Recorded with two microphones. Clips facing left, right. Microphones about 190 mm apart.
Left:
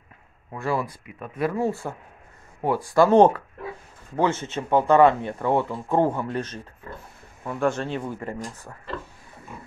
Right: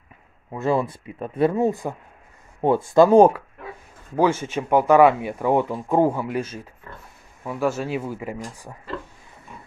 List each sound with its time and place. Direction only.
0.5 s speech: 20° right (ahead or behind)
3.1 s speech: 10° right (ahead or behind)